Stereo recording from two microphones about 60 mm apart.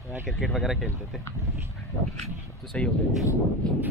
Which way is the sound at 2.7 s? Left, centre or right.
Centre.